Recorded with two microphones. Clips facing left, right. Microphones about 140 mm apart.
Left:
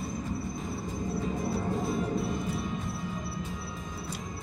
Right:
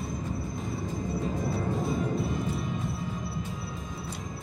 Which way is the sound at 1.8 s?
Centre (ahead or behind).